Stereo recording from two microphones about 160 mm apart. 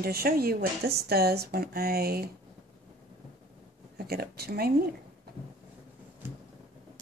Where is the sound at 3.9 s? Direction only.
75° right (ahead or behind).